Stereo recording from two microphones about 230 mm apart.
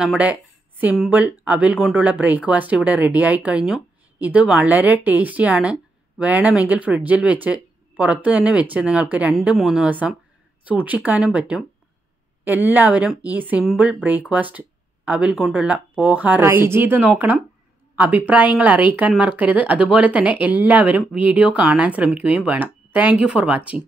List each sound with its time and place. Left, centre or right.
0.0 s a woman's voice: centre